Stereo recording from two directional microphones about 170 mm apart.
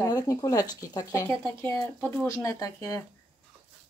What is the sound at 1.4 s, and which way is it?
Speech, 10° left (ahead or behind).